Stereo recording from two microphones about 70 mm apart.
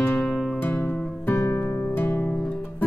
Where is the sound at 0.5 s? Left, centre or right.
Left.